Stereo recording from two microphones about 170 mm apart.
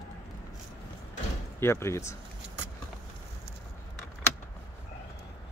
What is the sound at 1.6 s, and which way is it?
Speech, 15° left (ahead or behind).